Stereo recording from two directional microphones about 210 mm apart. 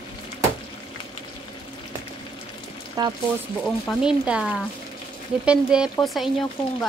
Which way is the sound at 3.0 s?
20° right (ahead or behind).